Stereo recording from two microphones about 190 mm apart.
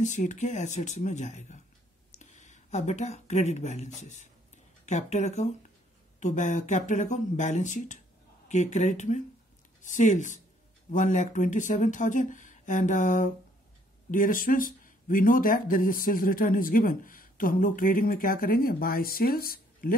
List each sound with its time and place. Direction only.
0.0 s speech: 40° left (ahead or behind)